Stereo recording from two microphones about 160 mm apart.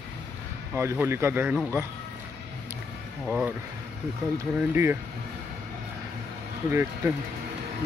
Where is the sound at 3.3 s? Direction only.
5° right (ahead or behind).